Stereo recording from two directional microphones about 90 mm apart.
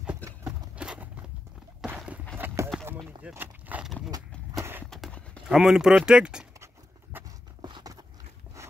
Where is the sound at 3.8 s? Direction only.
5° right (ahead or behind).